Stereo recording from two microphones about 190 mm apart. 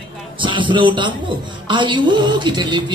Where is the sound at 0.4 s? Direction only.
25° right (ahead or behind).